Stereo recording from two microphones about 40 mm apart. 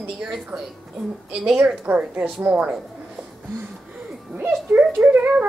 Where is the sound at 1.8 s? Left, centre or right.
Right.